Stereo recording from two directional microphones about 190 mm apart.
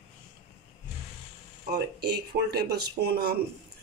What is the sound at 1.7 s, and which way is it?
Speech, 60° right (ahead or behind).